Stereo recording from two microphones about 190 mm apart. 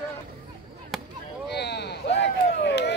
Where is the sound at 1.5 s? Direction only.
60° left (ahead or behind).